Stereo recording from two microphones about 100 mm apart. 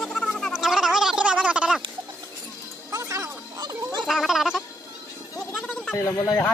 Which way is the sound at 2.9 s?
30° right (ahead or behind).